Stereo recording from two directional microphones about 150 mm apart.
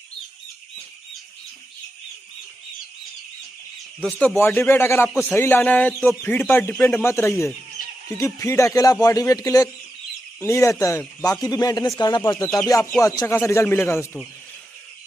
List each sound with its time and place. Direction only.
4.0 s speech: 5° left (ahead or behind)
4.4 s a man's voice: 15° left (ahead or behind)